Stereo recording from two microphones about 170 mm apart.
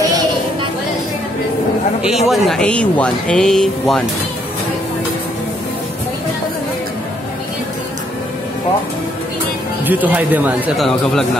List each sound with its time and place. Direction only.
2.0 s a man's voice: centre (ahead or behind)
9.8 s speech: 10° right (ahead or behind)
10.8 s a man's voice: 5° left (ahead or behind)